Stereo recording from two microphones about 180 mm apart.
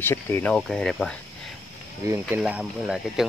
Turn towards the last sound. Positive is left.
turn(degrees=-5)  # may be behind; listen again after turning